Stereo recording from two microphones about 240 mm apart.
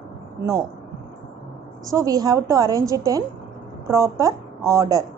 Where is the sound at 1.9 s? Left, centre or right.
Centre.